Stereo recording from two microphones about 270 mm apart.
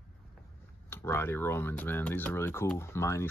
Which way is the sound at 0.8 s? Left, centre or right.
Centre.